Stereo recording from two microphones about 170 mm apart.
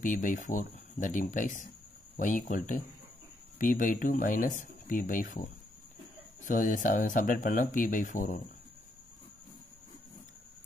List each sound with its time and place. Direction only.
0.0 s speech: 50° left (ahead or behind)